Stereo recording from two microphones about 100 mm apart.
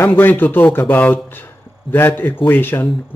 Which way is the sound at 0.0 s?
20° left (ahead or behind).